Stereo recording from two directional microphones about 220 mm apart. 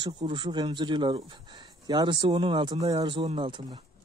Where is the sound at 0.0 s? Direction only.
20° right (ahead or behind).